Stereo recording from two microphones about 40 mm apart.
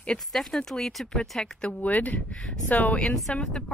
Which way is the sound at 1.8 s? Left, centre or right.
Left.